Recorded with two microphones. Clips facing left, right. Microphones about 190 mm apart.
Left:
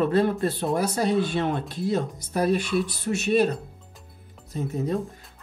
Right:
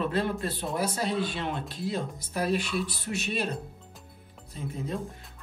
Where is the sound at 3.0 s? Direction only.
45° left (ahead or behind).